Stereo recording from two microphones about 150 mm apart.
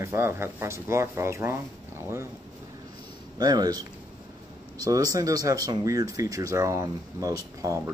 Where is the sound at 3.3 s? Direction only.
25° right (ahead or behind).